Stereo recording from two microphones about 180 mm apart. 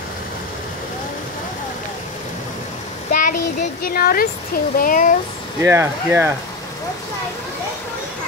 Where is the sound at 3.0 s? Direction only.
45° left (ahead or behind).